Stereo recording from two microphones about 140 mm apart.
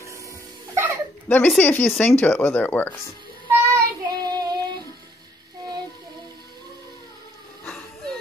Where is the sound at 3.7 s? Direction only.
30° right (ahead or behind).